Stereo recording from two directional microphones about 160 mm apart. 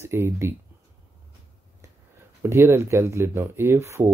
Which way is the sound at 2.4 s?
15° right (ahead or behind).